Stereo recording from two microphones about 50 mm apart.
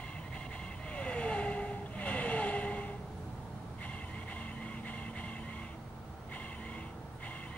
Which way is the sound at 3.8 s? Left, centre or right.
Left.